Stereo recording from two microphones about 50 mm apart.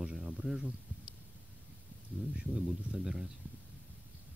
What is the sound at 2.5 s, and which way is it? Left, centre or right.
Speech, centre.